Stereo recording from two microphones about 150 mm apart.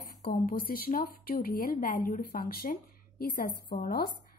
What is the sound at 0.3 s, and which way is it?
Speech, 75° left (ahead or behind).